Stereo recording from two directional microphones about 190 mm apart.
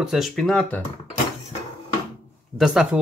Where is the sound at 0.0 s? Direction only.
Centre (ahead or behind).